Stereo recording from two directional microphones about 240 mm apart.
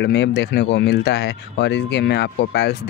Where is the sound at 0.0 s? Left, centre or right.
Left.